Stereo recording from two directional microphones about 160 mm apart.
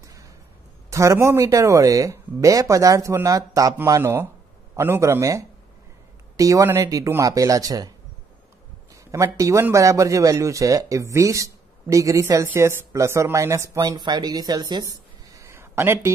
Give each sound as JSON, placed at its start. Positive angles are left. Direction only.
{"t": 0.0, "sound": "a sound", "side_deg": -20}
{"t": 0.8, "sound": "a man's voice", "side_deg": -20}
{"t": 9.1, "sound": "a man's voice", "side_deg": -20}